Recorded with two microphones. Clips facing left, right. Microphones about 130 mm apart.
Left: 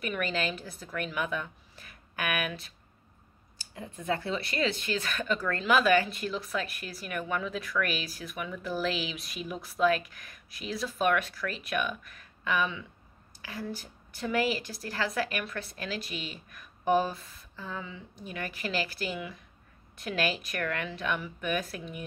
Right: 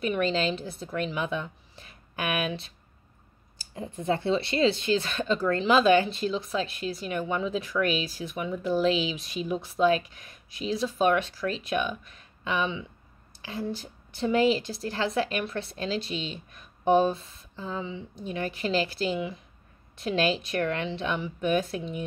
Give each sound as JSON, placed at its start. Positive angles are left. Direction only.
{"t": 0.0, "sound": "speech", "side_deg": -25}
{"t": 3.7, "sound": "speech", "side_deg": -30}